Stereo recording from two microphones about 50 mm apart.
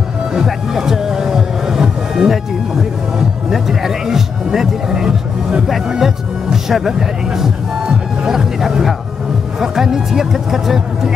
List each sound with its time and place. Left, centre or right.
0.3 s music: centre
9.6 s speech: centre